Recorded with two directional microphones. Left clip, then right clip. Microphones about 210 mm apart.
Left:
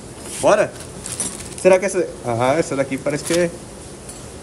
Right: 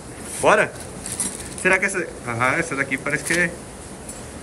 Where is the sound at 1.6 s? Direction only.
30° left (ahead or behind).